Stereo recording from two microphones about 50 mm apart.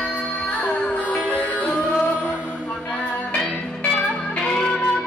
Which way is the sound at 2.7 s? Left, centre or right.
Centre.